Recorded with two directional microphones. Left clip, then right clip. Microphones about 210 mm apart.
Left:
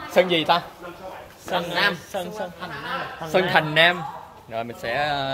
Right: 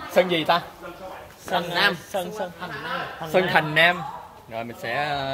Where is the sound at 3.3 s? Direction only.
5° left (ahead or behind).